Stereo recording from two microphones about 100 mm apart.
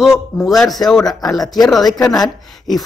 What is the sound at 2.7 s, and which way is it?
Speech, centre (ahead or behind).